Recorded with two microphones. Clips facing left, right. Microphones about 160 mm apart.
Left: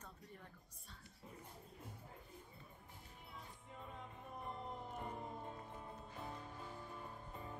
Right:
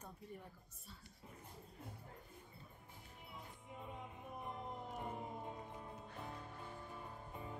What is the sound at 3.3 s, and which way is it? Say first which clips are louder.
Music: right 2 dB; 15° right (ahead or behind).